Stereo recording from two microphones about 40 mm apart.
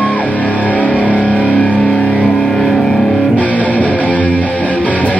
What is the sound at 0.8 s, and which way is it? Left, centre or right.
Music, centre.